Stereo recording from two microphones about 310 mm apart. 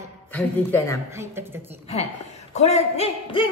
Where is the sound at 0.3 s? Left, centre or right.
Centre.